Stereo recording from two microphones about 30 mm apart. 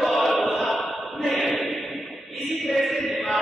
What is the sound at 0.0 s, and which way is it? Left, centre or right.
Music, centre.